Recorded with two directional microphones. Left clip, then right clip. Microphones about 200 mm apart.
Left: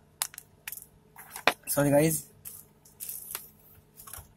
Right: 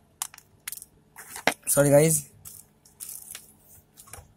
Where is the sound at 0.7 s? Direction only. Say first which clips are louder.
Right 2 dB; 35° right (ahead or behind).